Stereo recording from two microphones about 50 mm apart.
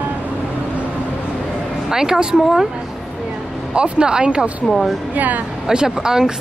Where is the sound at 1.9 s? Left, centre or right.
Centre.